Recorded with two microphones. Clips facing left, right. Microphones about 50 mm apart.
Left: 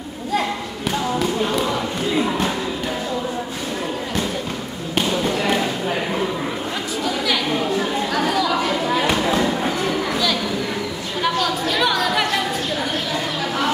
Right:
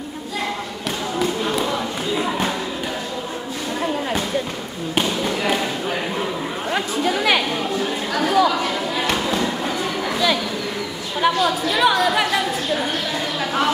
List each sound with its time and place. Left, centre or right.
1.2 s music: centre
4.9 s basketball bounce: centre
7.1 s chatter: right
8.1 s chatter: centre
9.2 s basketball bounce: centre
11.1 s chatter: centre